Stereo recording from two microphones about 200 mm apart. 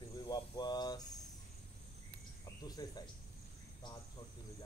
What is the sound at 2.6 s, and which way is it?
Speech, 20° left (ahead or behind).